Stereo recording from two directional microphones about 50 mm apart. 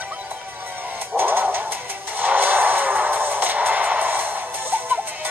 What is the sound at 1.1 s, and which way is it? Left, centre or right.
Music, right.